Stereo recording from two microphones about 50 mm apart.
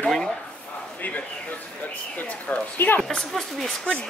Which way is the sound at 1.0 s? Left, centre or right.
Left.